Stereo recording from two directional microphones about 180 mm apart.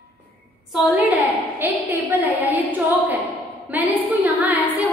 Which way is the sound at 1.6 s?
10° right (ahead or behind).